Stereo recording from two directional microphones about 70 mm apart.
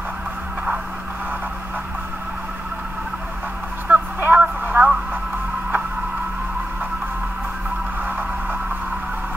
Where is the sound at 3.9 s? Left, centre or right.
Centre.